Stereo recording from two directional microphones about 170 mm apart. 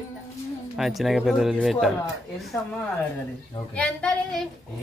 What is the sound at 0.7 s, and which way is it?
Speech, centre (ahead or behind).